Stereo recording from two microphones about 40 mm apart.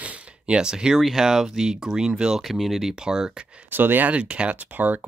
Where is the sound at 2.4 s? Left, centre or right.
Centre.